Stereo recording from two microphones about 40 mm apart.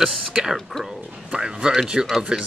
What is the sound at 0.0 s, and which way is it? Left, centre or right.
Speech, centre.